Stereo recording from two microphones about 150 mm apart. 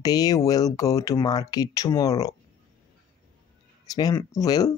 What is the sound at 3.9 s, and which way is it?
Speech, 25° left (ahead or behind).